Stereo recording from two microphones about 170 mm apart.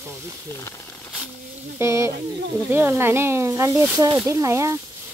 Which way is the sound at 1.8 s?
15° right (ahead or behind).